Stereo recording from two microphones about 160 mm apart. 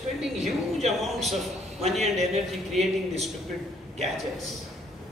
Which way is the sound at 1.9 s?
Centre (ahead or behind).